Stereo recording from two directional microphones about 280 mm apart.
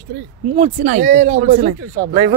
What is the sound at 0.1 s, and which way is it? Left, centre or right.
Speech, right.